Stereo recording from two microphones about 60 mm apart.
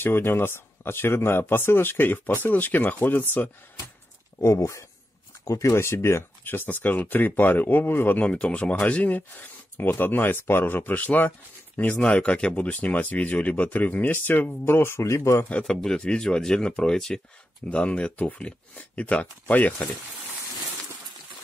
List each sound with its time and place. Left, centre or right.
0.0 s speech: left
4.4 s speech: left
6.5 s speech: left
8.2 s speech: centre
12.0 s speech: centre; by 15.4 s left
15.6 s speech: centre
17.6 s speech: left